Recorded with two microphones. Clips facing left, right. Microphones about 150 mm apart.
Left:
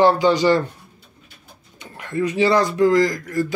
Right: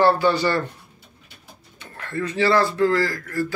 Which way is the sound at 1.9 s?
15° left (ahead or behind).